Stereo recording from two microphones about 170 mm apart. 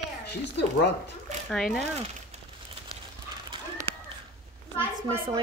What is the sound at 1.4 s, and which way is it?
Speech, centre (ahead or behind).